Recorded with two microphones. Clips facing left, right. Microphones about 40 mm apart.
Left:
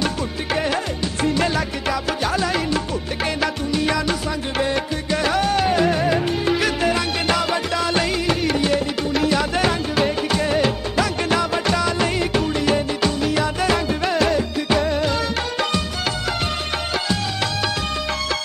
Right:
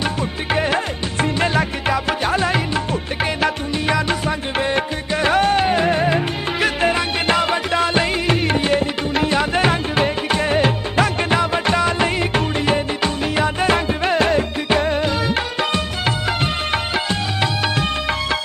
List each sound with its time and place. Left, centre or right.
0.0 s music: right